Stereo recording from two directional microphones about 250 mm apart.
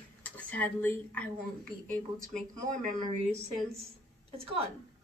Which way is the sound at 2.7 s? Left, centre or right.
Right.